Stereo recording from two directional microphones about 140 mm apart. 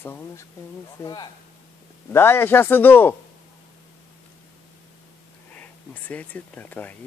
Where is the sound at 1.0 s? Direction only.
30° left (ahead or behind).